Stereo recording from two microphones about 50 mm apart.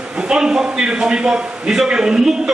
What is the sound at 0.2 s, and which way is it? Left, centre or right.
A man's voice, centre.